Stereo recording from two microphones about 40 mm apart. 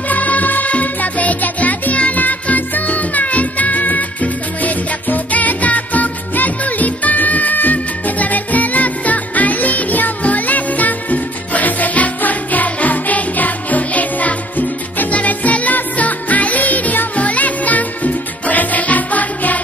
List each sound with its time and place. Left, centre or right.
0.1 s music: left